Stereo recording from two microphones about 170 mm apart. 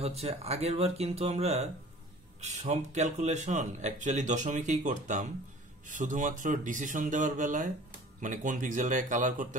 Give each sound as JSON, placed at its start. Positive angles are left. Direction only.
{"t": 0.0, "sound": "speech", "side_deg": -40}